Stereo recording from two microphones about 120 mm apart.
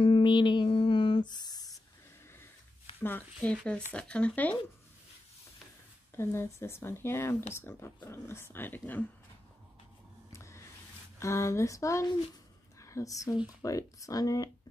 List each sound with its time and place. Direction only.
0.0 s music: 45° left (ahead or behind)
3.0 s speech: 15° left (ahead or behind)
6.1 s speech: 20° left (ahead or behind)
10.3 s a sound: 25° left (ahead or behind)
11.1 s speech: 25° left (ahead or behind)
12.7 s a sound: 25° left (ahead or behind)
13.6 s speech: 30° left (ahead or behind)